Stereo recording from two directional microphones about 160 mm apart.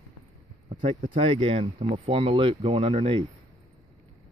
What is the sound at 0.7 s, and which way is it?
Speech, 35° right (ahead or behind).